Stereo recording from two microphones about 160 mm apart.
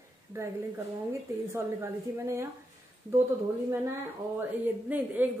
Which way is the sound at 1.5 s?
15° right (ahead or behind).